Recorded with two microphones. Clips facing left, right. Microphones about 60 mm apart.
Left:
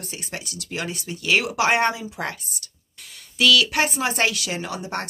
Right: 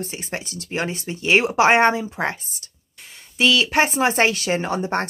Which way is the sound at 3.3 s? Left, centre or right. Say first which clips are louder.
Right 1 dB; right.